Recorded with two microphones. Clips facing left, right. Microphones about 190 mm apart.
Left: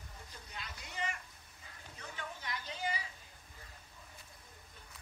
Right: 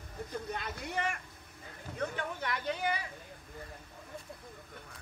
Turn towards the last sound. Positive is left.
turn(degrees=-60)  # may be behind; listen again after turning